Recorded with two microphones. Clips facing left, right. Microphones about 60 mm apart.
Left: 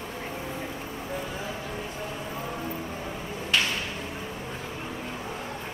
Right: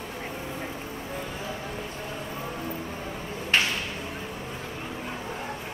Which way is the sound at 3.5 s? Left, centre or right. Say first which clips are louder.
Right 2 dB; right.